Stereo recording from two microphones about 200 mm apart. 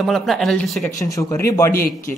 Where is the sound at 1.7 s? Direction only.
45° left (ahead or behind).